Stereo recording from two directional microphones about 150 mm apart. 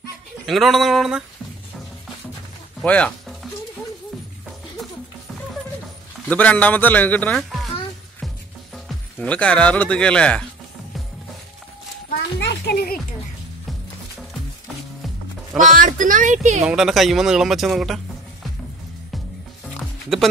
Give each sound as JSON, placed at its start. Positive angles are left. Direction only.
{"t": 0.5, "sound": "speech", "side_deg": 0}
{"t": 2.8, "sound": "speech", "side_deg": 10}
{"t": 6.2, "sound": "speech", "side_deg": 10}
{"t": 8.7, "sound": "speech", "side_deg": 5}
{"t": 12.1, "sound": "a sound", "side_deg": 90}
{"t": 15.5, "sound": "speech", "side_deg": -60}
{"t": 16.6, "sound": "speech", "side_deg": -5}
{"t": 19.6, "sound": "music", "side_deg": 0}